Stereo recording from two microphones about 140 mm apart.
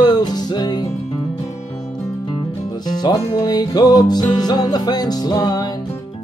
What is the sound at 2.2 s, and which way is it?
Music, 30° left (ahead or behind).